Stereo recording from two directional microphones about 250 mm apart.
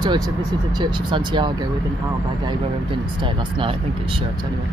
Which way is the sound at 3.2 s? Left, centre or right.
Centre.